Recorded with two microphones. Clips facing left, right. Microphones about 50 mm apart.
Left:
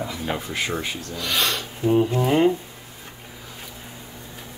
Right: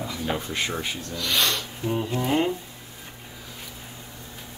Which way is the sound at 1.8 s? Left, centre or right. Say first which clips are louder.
Left 6 dB; centre.